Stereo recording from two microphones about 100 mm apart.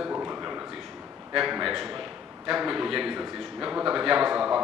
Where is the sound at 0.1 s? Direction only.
15° right (ahead or behind).